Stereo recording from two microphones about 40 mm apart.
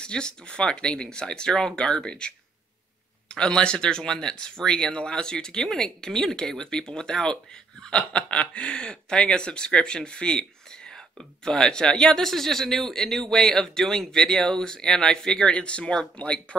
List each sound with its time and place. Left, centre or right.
0.0 s speech: left
15.5 s speech: left